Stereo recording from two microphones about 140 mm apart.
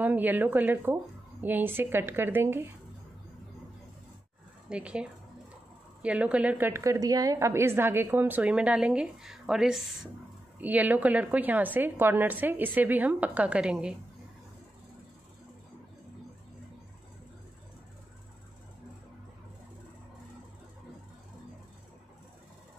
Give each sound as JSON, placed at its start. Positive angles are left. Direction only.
{"t": 0.0, "sound": "a woman's voice", "side_deg": -10}
{"t": 4.6, "sound": "a woman's voice", "side_deg": -5}
{"t": 6.0, "sound": "a woman's voice", "side_deg": -10}